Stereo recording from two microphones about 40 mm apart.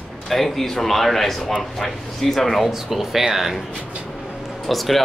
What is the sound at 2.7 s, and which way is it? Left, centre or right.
Speech, centre.